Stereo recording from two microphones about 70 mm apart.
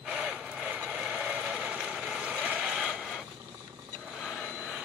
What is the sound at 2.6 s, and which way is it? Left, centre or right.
Mechanisms, centre.